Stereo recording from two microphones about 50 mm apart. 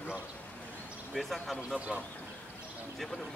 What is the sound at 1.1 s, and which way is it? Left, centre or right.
Speech, centre.